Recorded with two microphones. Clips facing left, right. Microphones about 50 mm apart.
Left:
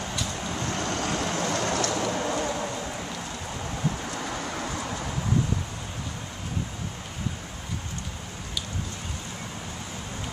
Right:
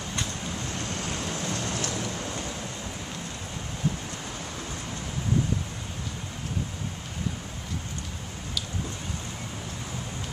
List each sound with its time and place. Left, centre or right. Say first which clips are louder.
0.7 s vehicle: left 7 dB; left